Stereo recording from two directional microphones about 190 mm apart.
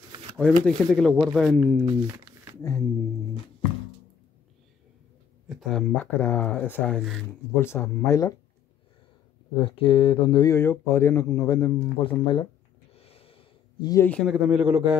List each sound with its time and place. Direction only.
0.4 s speech: 5° left (ahead or behind)
5.5 s speech: centre (ahead or behind); by 8.4 s 15° left (ahead or behind)
9.6 s speech: 30° left (ahead or behind)
12.9 s a sound: 30° left (ahead or behind)
14.0 s speech: 5° left (ahead or behind)